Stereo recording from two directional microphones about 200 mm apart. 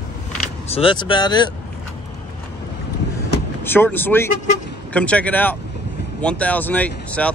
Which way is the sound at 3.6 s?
10° left (ahead or behind).